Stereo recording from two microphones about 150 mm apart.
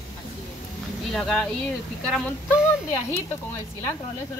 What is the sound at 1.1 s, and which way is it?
Speech, 5° left (ahead or behind).